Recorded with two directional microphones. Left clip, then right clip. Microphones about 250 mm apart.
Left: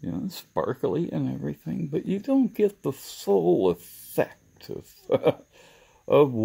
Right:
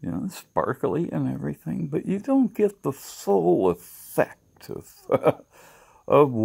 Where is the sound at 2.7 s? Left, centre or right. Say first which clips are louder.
Right 1 dB; right.